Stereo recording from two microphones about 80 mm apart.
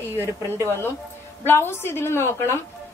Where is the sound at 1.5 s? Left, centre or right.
Left.